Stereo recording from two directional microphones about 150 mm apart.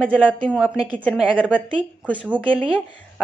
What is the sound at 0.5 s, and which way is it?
Speech, 5° right (ahead or behind).